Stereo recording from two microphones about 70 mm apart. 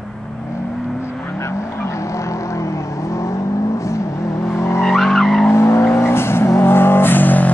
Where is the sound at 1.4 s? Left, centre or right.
Left.